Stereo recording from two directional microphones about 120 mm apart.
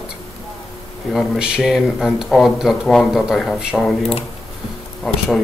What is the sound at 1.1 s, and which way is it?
Speech, centre (ahead or behind).